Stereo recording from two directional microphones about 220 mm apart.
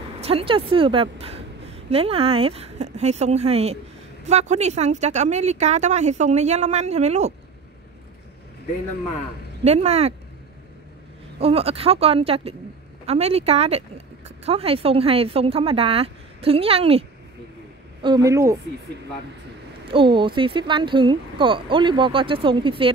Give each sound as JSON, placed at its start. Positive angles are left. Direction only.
{"t": 0.2, "sound": "speech", "side_deg": -25}
{"t": 9.7, "sound": "speech", "side_deg": -30}
{"t": 11.3, "sound": "speech", "side_deg": -25}
{"t": 18.0, "sound": "a woman's voice", "side_deg": -15}
{"t": 19.9, "sound": "speech", "side_deg": -20}